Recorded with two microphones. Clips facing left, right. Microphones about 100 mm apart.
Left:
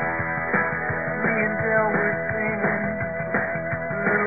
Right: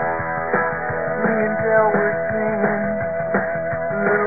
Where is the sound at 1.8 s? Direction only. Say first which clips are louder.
Right 5 dB; 10° right (ahead or behind).